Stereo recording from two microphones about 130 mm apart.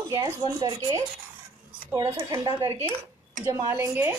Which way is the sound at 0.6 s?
30° right (ahead or behind).